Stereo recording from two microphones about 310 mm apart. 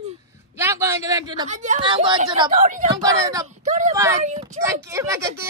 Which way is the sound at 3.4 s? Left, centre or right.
Right.